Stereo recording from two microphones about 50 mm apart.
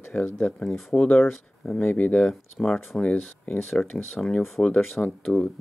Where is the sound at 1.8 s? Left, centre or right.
Left.